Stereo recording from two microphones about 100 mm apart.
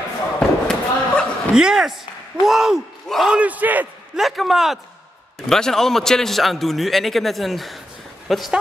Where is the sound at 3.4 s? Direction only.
15° right (ahead or behind).